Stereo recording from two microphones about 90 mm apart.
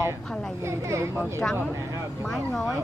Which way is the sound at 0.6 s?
35° right (ahead or behind).